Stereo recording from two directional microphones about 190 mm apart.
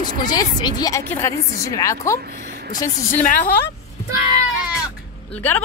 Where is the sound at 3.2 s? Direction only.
45° left (ahead or behind).